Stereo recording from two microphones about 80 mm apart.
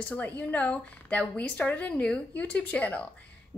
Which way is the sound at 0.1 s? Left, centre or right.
Left.